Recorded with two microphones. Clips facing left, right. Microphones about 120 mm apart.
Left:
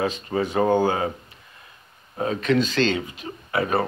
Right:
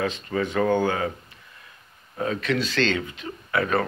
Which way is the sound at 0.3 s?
30° left (ahead or behind).